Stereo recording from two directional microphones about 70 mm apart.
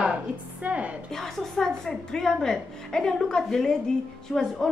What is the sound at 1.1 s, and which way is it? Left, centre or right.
A woman's voice, centre.